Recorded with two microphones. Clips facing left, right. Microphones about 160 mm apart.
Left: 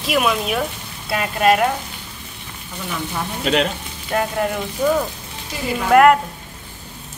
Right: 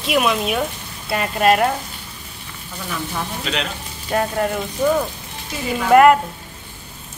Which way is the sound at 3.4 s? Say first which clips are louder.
Left 10 dB; 50° left (ahead or behind).